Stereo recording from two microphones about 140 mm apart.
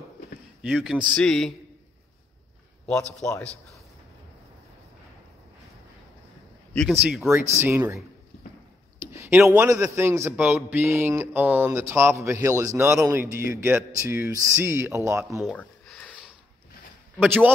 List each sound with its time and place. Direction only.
0.6 s a man's voice: 5° right (ahead or behind)
2.9 s a man's voice: 5° left (ahead or behind)
6.7 s speech: 5° left (ahead or behind)
7.0 s a man's voice: 10° right (ahead or behind)
7.6 s speech: 20° right (ahead or behind)
9.1 s a sound: 20° right (ahead or behind)
9.4 s a man's voice: 10° right (ahead or behind)
9.7 s a man's voice: 20° right (ahead or behind)
15.4 s a sound: 5° left (ahead or behind)
17.2 s a man's voice: 10° right (ahead or behind)